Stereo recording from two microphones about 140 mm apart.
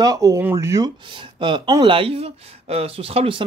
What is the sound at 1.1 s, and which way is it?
Speech, 35° right (ahead or behind).